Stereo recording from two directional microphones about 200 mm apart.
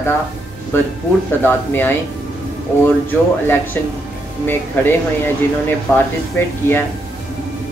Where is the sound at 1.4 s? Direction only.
10° left (ahead or behind).